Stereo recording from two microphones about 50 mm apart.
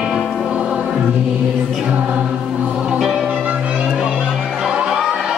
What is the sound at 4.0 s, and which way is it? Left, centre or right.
Music, centre.